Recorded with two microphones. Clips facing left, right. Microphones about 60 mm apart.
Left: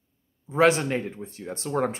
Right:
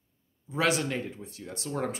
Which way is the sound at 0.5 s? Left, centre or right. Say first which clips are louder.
Left 7 dB; left.